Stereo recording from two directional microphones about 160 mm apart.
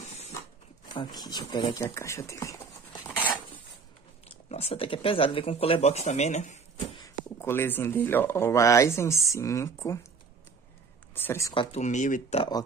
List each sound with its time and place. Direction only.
0.9 s speech: 25° left (ahead or behind)
3.2 s a sound: 10° left (ahead or behind)
4.5 s speech: 40° left (ahead or behind)
7.0 s speech: 15° left (ahead or behind)
11.1 s speech: 15° left (ahead or behind)
11.7 s speech: 50° left (ahead or behind)